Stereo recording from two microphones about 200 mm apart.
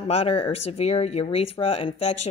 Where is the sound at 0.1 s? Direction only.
30° left (ahead or behind).